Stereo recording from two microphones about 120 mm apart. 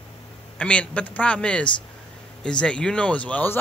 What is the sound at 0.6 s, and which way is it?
Speech, 10° left (ahead or behind).